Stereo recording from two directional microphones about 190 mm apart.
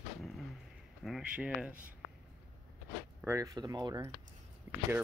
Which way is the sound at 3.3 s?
15° right (ahead or behind).